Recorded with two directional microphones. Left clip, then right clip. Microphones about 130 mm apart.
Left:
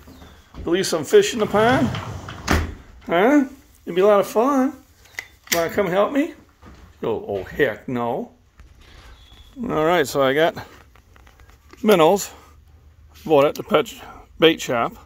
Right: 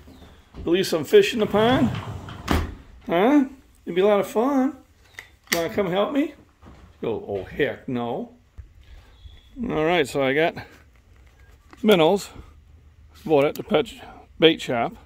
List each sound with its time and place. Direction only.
0.7 s speech: 30° right (ahead or behind)
3.1 s speech: 30° right (ahead or behind)
4.0 s speech: 15° right (ahead or behind)
9.6 s speech: 20° right (ahead or behind)
11.8 s speech: 20° right (ahead or behind)